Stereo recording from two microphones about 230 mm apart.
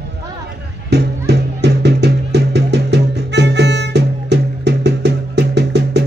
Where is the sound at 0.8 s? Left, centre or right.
Right.